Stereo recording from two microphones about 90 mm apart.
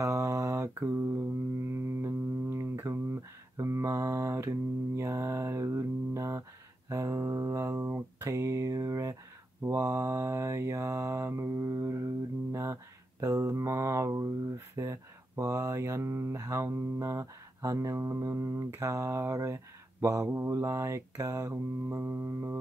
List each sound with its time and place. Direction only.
0.0 s mantra: 35° right (ahead or behind)
6.9 s a sound: 35° right (ahead or behind)
9.6 s mantra: 35° right (ahead or behind)
13.2 s a sound: 40° right (ahead or behind)
20.2 s mantra: 30° right (ahead or behind)
21.8 s music: 25° right (ahead or behind)